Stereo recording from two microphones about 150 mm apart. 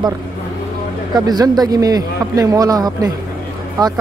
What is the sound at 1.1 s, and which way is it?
A man's voice, 25° right (ahead or behind).